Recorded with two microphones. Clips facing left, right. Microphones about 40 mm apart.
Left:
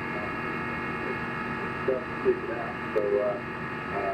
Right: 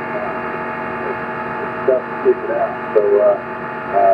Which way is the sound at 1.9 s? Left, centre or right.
Right.